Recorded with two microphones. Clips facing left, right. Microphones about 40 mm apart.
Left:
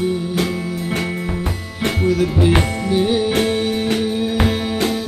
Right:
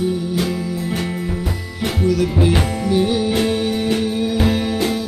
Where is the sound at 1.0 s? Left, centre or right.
Left.